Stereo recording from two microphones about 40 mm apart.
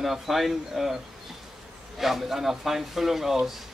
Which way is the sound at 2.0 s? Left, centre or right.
Centre.